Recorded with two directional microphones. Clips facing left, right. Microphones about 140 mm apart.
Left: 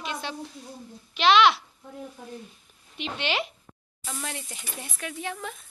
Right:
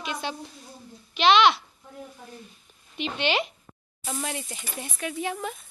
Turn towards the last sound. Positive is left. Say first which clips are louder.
# right 4 dB
turn(degrees=-10)  # may be behind; listen again after turning